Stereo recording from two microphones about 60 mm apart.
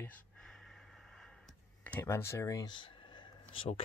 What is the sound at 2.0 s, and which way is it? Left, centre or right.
Speech, left.